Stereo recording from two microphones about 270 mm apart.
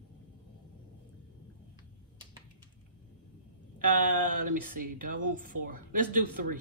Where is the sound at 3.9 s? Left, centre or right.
Right.